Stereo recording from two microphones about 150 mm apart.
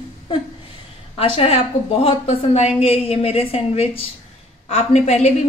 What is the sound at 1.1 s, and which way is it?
A woman's voice, 40° left (ahead or behind).